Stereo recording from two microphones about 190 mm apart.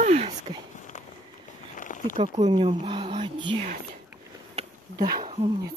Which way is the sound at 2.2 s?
30° right (ahead or behind).